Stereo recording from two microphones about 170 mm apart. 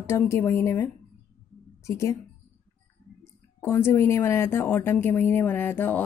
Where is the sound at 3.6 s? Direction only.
15° left (ahead or behind).